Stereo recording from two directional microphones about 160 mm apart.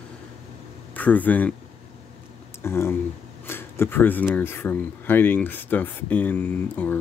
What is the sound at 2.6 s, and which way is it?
Speech, 15° left (ahead or behind).